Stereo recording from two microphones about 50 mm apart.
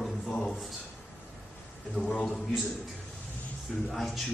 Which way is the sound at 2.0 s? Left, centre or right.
Left.